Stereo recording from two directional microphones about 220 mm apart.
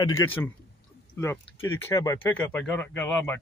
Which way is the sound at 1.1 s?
10° left (ahead or behind).